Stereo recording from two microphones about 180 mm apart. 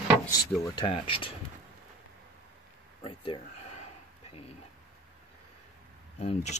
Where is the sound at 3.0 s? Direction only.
30° left (ahead or behind).